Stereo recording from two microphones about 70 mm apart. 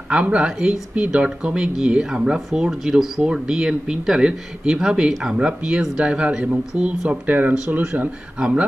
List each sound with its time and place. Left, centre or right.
0.1 s speech: centre